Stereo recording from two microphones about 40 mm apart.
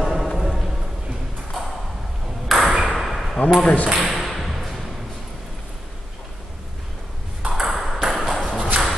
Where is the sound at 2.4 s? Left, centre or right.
Centre.